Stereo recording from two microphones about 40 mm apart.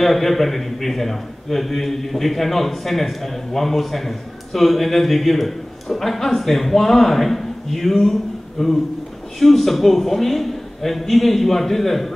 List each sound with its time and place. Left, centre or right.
0.0 s a man's voice: centre